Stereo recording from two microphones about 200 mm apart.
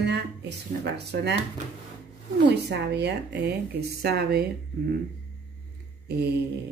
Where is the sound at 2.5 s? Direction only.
55° right (ahead or behind).